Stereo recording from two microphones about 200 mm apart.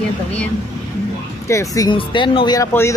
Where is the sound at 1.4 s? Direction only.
15° left (ahead or behind).